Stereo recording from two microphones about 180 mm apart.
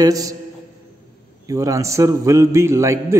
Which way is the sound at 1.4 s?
20° right (ahead or behind).